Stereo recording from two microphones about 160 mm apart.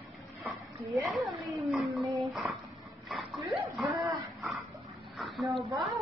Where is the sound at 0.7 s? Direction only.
20° right (ahead or behind).